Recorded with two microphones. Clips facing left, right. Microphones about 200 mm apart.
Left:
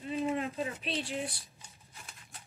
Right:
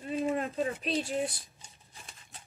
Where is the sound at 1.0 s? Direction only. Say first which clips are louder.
Right 4 dB; 45° right (ahead or behind).